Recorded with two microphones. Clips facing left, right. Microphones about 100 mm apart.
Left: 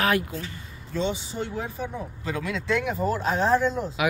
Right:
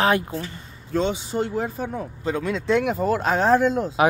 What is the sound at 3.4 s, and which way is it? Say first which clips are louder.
Speech: right 3 dB; 45° right (ahead or behind).